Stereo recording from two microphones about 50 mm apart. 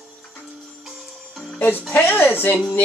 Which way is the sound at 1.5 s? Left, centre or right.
Left.